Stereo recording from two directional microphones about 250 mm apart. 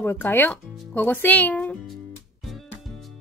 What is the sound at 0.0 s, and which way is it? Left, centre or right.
Speech, centre.